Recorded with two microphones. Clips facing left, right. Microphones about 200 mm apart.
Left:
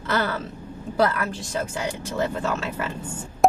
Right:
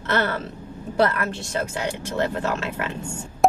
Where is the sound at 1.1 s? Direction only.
5° left (ahead or behind).